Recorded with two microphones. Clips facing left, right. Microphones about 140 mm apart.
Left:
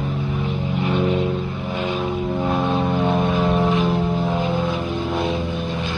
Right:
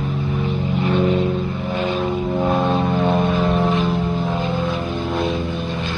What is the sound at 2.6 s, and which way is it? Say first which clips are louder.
Vehicle: right 2 dB; centre (ahead or behind).